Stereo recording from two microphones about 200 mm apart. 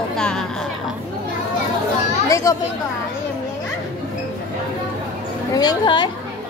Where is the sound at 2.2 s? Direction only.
15° left (ahead or behind).